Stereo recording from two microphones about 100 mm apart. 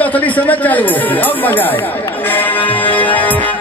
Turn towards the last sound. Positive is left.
turn(degrees=15)  # may be behind; listen again after turning